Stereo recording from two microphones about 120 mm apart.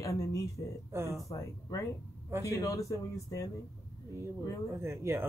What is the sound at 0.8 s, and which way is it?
Speech, 25° right (ahead or behind).